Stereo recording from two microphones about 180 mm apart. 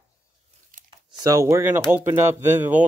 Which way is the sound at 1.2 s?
15° right (ahead or behind).